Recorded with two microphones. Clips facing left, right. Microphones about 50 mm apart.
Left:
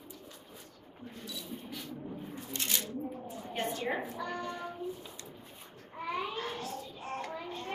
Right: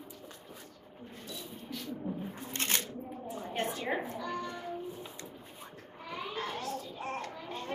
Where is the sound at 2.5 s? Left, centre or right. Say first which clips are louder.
Right 2 dB; right.